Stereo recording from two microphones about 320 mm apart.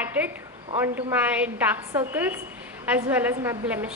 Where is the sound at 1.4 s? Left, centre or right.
Centre.